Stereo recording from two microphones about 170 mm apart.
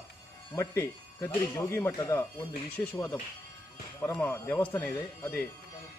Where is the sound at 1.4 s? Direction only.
15° left (ahead or behind).